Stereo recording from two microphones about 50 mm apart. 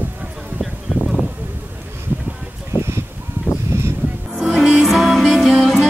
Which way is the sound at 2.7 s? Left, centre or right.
Right.